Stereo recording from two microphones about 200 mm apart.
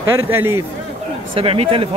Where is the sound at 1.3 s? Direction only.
30° right (ahead or behind).